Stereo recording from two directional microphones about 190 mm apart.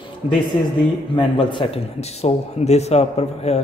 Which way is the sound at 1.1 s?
25° left (ahead or behind).